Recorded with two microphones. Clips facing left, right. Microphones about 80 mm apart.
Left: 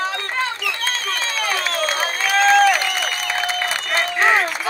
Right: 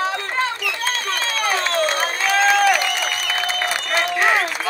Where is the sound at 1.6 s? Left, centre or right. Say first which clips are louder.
Right 2 dB; right.